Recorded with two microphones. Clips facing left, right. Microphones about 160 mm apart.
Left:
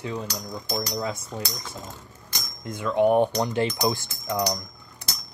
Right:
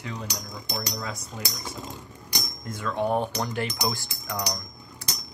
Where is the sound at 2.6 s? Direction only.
15° left (ahead or behind).